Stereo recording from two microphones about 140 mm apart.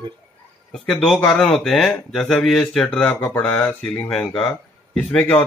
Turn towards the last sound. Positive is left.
turn(degrees=5)  # may be behind; listen again after turning